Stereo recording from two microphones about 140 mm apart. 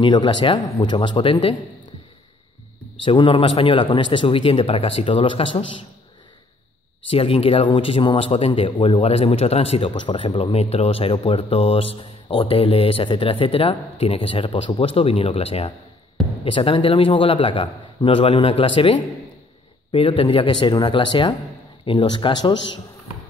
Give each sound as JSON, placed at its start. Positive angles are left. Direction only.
{"t": 0.0, "sound": "a man's voice", "side_deg": 35}
{"t": 3.1, "sound": "a man's voice", "side_deg": 40}
{"t": 7.1, "sound": "a man's voice", "side_deg": 45}